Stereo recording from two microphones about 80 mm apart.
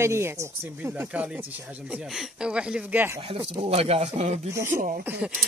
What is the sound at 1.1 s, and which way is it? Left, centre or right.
Speech, centre.